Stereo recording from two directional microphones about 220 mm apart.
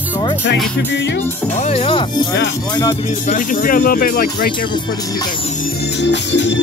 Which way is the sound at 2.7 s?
15° left (ahead or behind).